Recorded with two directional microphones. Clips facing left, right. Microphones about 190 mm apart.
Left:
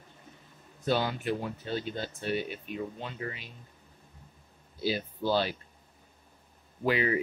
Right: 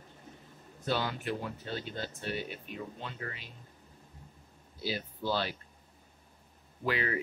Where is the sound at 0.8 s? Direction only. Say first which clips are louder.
Left 4 dB; 15° left (ahead or behind).